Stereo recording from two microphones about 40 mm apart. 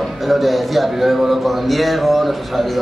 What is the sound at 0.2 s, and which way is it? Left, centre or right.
A man's voice, centre.